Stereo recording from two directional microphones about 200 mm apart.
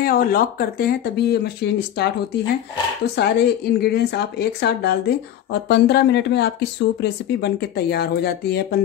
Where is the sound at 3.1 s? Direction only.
55° left (ahead or behind).